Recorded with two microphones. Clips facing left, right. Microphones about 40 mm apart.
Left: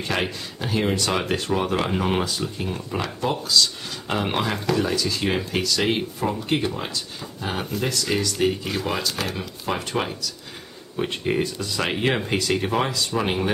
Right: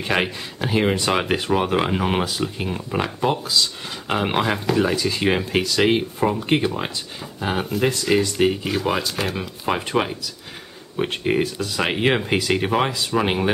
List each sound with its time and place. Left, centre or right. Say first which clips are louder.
0.0 s speech: right 3 dB; right
2.7 s speech: right 3 dB; centre
8.5 s speech: right 3 dB; centre